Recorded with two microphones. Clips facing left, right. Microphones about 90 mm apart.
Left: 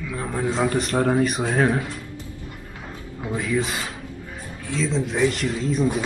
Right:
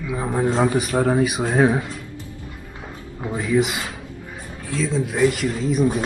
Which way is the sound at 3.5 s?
15° right (ahead or behind).